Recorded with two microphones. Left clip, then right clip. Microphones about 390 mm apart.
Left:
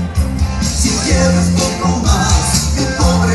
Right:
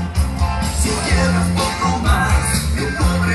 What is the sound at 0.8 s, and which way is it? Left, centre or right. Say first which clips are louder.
Music: left 4 dB; centre.